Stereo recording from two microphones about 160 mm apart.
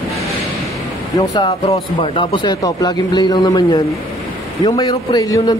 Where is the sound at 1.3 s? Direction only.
35° left (ahead or behind).